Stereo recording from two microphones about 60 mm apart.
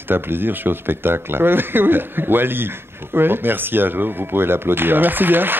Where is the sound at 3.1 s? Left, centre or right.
Right.